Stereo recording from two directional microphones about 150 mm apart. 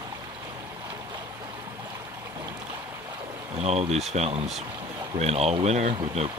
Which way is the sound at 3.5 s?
45° right (ahead or behind).